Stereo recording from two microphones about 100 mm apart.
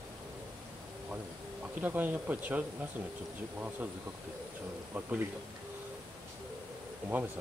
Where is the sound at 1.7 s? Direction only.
20° right (ahead or behind).